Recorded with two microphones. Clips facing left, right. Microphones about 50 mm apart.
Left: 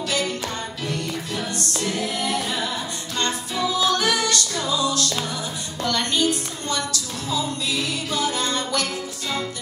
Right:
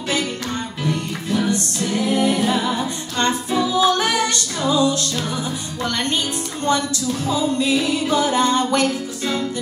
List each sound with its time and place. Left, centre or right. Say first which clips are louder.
0.8 s music: right 5 dB; right